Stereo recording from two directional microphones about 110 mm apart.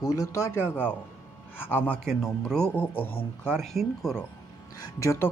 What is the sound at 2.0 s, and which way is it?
Speech, centre (ahead or behind).